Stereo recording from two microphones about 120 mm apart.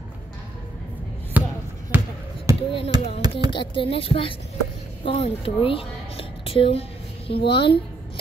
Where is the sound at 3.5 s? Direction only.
45° left (ahead or behind).